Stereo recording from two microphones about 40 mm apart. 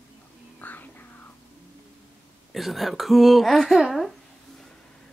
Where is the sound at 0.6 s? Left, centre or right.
Left.